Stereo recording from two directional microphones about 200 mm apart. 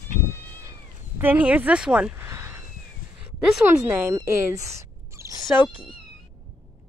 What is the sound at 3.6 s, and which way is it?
Speech, 10° right (ahead or behind).